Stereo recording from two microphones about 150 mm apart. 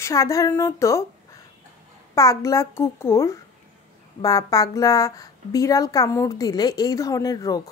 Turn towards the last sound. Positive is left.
turn(degrees=25)  # may be behind; listen again after turning